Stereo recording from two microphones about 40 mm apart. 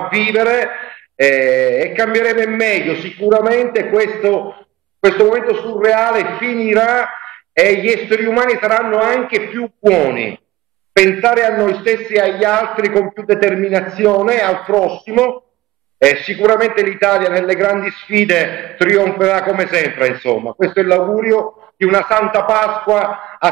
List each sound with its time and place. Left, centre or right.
0.0 s a man's voice: centre
7.2 s a man's voice: centre
20.4 s a man's voice: centre